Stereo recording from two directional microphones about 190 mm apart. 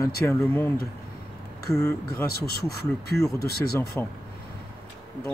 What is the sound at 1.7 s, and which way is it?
Speech, 15° left (ahead or behind).